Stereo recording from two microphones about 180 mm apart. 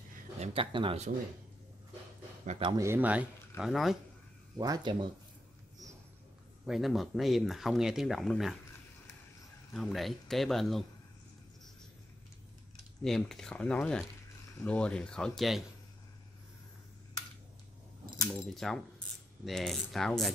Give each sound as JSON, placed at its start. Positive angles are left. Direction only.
{"t": 0.4, "sound": "speech", "side_deg": -30}
{"t": 2.6, "sound": "speech", "side_deg": -20}
{"t": 4.6, "sound": "speech", "side_deg": -20}
{"t": 6.6, "sound": "speech", "side_deg": 0}
{"t": 9.8, "sound": "speech", "side_deg": 0}
{"t": 13.0, "sound": "speech", "side_deg": 0}
{"t": 18.3, "sound": "speech", "side_deg": 0}